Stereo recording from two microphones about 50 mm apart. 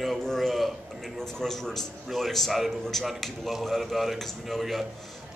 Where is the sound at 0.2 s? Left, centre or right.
Centre.